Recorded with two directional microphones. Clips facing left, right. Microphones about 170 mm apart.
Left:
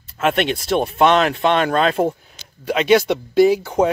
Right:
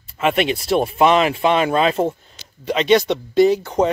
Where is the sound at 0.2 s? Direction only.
Centre (ahead or behind).